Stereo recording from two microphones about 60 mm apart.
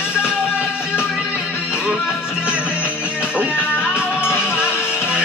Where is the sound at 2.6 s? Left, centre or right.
Left.